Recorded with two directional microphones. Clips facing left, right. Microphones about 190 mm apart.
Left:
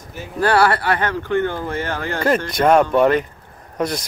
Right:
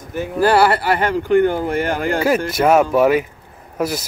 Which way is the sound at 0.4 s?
5° right (ahead or behind).